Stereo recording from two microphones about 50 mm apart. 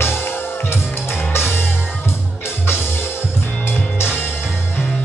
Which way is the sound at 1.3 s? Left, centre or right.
Left.